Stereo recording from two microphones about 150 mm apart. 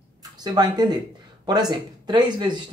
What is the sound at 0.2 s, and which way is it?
Speech, 25° right (ahead or behind).